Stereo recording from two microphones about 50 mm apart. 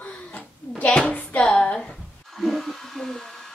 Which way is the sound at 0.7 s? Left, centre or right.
Left.